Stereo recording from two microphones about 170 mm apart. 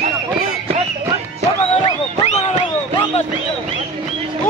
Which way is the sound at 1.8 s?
40° left (ahead or behind).